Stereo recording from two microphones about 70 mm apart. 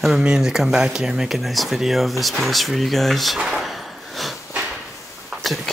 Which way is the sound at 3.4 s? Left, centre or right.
Centre.